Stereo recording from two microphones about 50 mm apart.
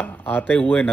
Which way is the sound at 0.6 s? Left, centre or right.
Left.